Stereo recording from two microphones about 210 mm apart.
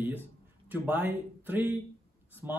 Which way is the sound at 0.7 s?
10° right (ahead or behind).